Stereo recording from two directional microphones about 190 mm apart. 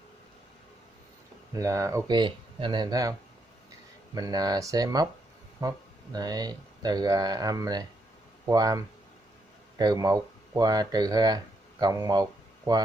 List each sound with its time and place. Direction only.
1.5 s speech: 15° right (ahead or behind)